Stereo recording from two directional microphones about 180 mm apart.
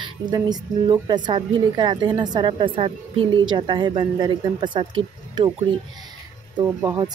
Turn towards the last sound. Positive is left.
turn(degrees=-20)  # may be behind; listen again after turning